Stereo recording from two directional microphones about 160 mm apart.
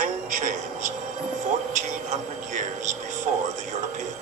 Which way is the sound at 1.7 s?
50° right (ahead or behind).